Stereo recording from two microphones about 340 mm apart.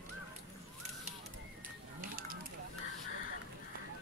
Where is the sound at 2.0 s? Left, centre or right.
Right.